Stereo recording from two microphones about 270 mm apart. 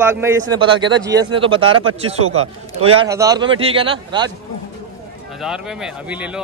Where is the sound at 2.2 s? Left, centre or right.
Right.